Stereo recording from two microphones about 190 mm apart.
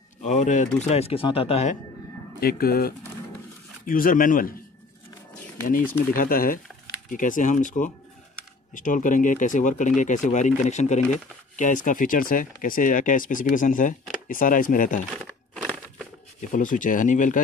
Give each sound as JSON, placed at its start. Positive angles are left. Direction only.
{"t": 0.2, "sound": "speech", "side_deg": 40}
{"t": 2.4, "sound": "speech", "side_deg": 50}
{"t": 5.7, "sound": "speech", "side_deg": 45}
{"t": 15.5, "sound": "crumpling", "side_deg": 5}
{"t": 16.3, "sound": "speech", "side_deg": 45}